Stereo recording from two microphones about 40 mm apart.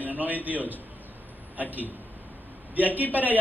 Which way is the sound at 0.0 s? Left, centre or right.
Right.